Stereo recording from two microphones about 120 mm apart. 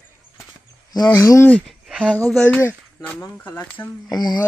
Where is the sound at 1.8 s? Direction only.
10° right (ahead or behind).